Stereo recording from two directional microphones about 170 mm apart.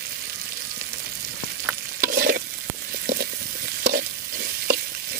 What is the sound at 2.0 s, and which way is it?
Stir, 60° right (ahead or behind).